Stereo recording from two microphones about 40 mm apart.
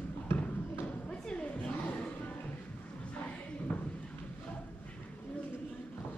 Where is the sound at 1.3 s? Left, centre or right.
Left.